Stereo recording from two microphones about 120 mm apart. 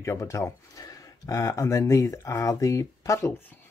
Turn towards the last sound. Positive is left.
turn(degrees=25)  # may be behind; listen again after turning